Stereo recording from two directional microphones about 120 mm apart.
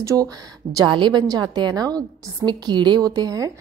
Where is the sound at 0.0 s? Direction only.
30° right (ahead or behind).